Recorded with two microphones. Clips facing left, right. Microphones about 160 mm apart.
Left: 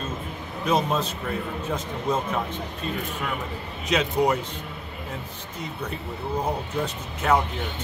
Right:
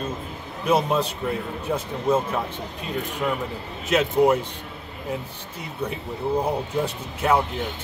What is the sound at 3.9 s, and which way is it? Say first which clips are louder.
Speech: right 4 dB; 5° right (ahead or behind).